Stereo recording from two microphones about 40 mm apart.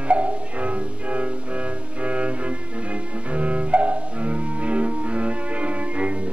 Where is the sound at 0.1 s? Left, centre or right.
Right.